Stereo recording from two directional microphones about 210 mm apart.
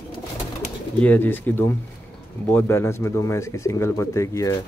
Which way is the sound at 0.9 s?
10° left (ahead or behind).